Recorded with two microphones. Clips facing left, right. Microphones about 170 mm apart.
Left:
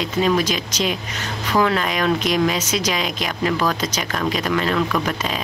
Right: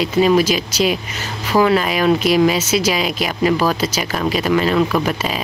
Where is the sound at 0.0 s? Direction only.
10° right (ahead or behind).